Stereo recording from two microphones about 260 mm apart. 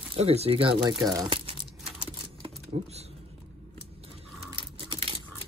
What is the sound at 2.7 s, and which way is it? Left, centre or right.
Speech, right.